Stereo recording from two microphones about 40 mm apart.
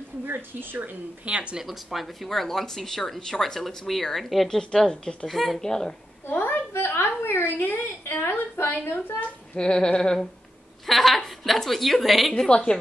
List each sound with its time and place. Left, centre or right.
0.2 s speech: right
1.2 s speech: right
1.7 s speech: centre
4.5 s speech: centre
5.3 s a woman's voice: centre
5.6 s speech: centre
6.2 s a sound: left
6.7 s a woman's voice: left
9.6 s a sound: left
10.9 s a woman's voice: centre
12.4 s a sound: left